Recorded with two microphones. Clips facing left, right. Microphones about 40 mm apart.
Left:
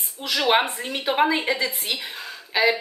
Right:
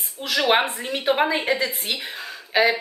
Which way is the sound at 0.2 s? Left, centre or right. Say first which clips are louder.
Right 1 dB; centre.